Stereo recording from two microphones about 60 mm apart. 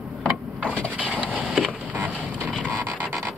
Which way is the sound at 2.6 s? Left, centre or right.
Right.